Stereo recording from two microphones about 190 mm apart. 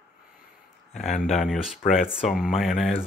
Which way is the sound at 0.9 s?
Centre (ahead or behind).